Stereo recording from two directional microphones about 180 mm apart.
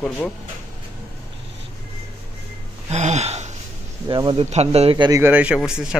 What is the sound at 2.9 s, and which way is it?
Gasp, 40° right (ahead or behind).